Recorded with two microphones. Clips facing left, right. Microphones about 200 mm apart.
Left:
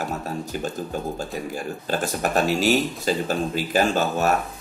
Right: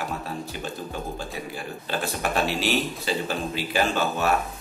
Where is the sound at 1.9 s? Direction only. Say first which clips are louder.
Left 3 dB; 45° left (ahead or behind).